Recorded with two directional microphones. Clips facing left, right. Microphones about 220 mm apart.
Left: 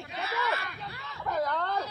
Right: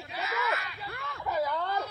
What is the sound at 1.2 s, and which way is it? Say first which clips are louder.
Speech: even; 5° right (ahead or behind).